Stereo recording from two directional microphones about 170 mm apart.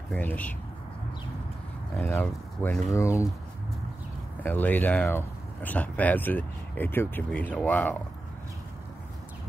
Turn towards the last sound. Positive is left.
turn(degrees=10)  # may be behind; listen again after turning